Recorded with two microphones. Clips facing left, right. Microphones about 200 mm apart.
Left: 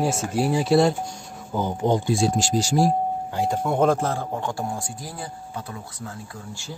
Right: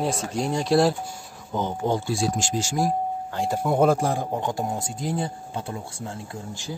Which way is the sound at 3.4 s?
5° right (ahead or behind).